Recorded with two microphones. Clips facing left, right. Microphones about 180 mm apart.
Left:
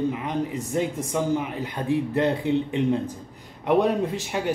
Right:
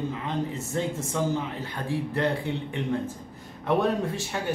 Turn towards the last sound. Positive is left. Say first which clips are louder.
# left 3 dB
turn(degrees=15)  # may be behind; listen again after turning